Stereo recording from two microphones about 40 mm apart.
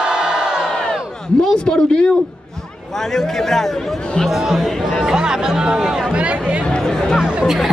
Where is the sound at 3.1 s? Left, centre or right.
Centre.